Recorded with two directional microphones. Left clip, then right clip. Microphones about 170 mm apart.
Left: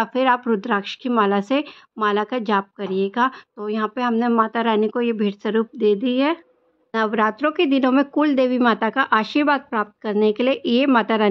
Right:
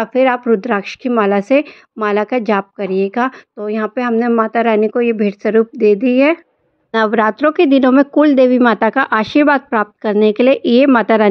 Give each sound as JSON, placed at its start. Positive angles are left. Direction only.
{"t": 0.0, "sound": "a woman's voice", "side_deg": -10}
{"t": 6.9, "sound": "speech", "side_deg": -35}